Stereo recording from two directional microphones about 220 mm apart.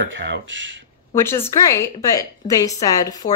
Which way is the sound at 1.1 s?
10° left (ahead or behind).